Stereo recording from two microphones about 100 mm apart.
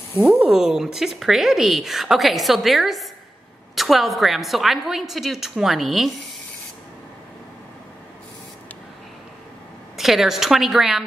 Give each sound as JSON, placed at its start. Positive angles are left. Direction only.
{"t": 0.2, "sound": "speech", "side_deg": -10}
{"t": 9.9, "sound": "speech", "side_deg": -5}